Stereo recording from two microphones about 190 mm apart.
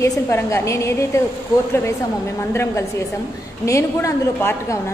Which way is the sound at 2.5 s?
15° left (ahead or behind).